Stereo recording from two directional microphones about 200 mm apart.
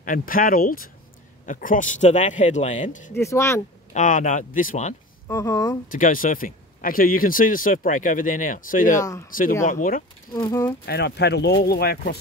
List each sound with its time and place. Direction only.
0.0 s a man's voice: 45° left (ahead or behind)
3.2 s speech: 15° left (ahead or behind)
3.9 s a man's voice: 40° left (ahead or behind)
5.3 s speech: 15° left (ahead or behind)
5.9 s speech: 40° left (ahead or behind)
10.3 s speech: 15° left (ahead or behind)
10.9 s speech: 55° left (ahead or behind)